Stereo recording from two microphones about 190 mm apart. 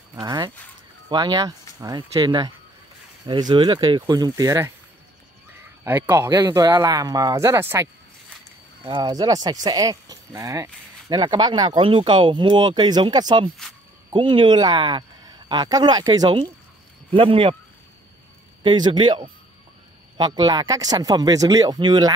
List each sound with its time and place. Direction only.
0.1 s speech: 20° right (ahead or behind)
18.6 s speech: 25° right (ahead or behind)